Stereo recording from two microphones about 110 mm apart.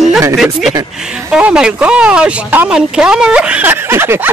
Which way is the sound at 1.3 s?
10° right (ahead or behind).